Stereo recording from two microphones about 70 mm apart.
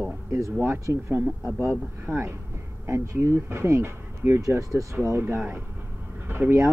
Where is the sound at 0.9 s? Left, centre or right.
Right.